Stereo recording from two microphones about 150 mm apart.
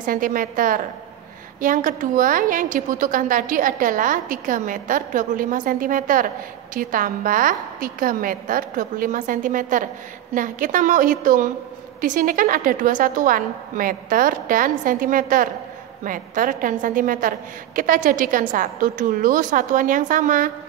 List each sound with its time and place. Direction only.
0.0 s a woman's voice: 65° right (ahead or behind)